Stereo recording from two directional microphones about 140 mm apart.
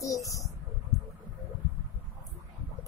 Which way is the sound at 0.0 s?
25° left (ahead or behind).